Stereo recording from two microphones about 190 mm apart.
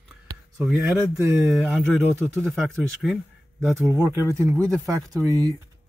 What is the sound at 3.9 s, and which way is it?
Speech, 15° right (ahead or behind).